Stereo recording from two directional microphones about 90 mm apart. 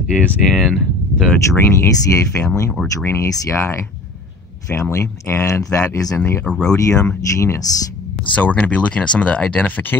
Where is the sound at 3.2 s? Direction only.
35° left (ahead or behind).